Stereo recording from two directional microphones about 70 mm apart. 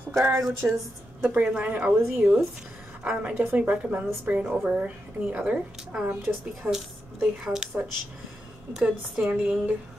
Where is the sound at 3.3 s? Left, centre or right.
Right; by 7.6 s centre.